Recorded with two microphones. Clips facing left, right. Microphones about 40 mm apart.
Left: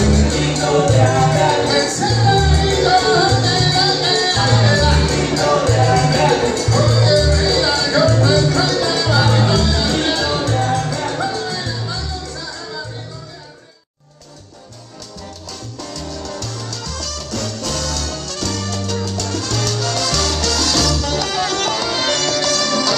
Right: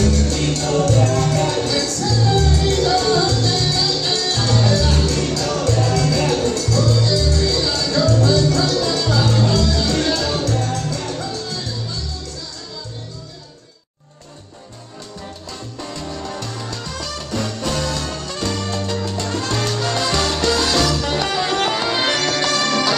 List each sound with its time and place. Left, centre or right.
0.0 s music: left
9.8 s music: left
11.1 s music: left
15.8 s music: right